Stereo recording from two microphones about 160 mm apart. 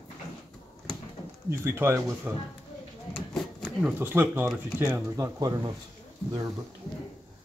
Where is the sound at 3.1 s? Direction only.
5° left (ahead or behind).